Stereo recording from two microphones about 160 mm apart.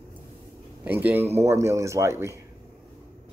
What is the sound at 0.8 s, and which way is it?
Speech, 10° right (ahead or behind).